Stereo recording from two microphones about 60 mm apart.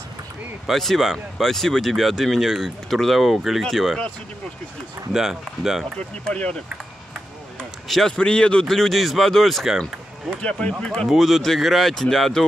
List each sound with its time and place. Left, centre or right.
0.7 s speech: centre
5.1 s speech: centre
5.9 s speech: centre
8.2 s a man's voice: centre
8.6 s speech: centre
10.7 s a man's voice: centre
11.1 s speech: centre